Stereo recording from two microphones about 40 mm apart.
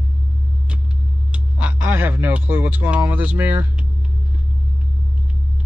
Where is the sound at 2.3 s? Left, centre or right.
Right.